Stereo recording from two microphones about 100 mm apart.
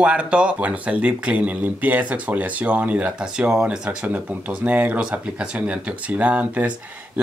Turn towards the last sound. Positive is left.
turn(degrees=-15)  # may be behind; listen again after turning